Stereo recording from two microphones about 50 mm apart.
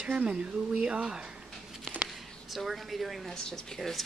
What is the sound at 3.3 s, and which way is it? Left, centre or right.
Speech, centre.